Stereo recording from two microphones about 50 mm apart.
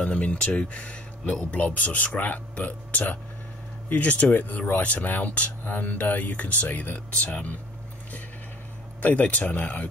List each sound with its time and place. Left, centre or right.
0.0 s speech: left
9.0 s speech: left